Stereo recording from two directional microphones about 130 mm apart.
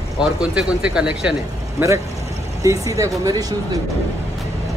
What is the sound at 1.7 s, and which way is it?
Speech, 25° right (ahead or behind).